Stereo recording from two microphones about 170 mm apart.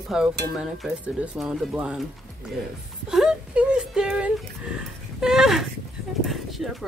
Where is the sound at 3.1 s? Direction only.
5° right (ahead or behind).